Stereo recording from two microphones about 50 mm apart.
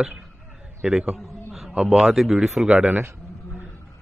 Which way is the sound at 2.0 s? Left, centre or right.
Centre.